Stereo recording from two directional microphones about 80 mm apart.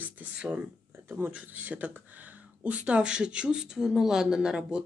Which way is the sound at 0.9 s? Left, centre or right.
Right.